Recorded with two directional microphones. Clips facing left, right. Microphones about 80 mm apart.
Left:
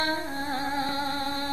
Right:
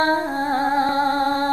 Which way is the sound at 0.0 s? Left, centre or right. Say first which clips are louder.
Right 9 dB; right.